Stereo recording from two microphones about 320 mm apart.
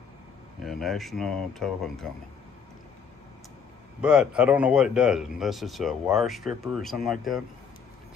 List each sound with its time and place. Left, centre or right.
0.7 s speech: centre
4.0 s speech: centre